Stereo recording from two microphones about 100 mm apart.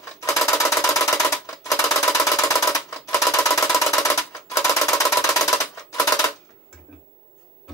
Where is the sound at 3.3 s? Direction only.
30° left (ahead or behind).